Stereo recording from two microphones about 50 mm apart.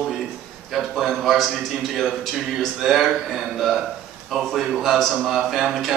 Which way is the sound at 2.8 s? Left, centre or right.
Centre.